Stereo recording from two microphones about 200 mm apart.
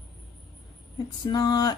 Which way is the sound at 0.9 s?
20° left (ahead or behind).